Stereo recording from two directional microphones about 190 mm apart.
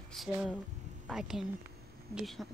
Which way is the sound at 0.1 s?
Centre (ahead or behind).